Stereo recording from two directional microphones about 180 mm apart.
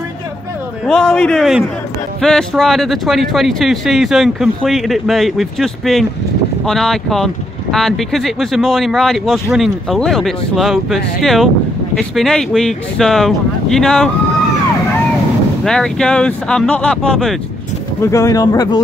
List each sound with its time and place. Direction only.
0.8 s speech: centre (ahead or behind)
15.6 s speech: 5° left (ahead or behind)
18.0 s speech: 15° left (ahead or behind)